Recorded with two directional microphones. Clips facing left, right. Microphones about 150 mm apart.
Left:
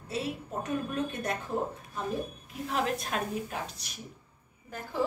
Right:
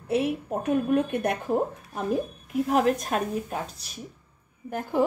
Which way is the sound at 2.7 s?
50° right (ahead or behind).